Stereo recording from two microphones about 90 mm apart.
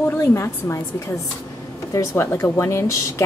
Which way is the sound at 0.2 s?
30° left (ahead or behind).